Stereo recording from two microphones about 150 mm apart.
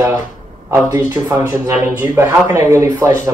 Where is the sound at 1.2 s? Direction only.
25° right (ahead or behind).